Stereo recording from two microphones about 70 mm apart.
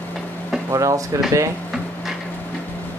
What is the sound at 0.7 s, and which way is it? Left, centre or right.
Speech, right.